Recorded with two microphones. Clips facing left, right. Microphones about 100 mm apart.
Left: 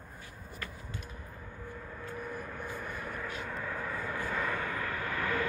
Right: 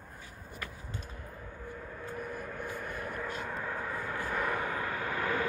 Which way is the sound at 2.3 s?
Centre (ahead or behind).